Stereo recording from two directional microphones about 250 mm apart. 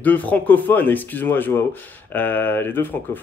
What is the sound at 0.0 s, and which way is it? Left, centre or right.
A man's voice, centre.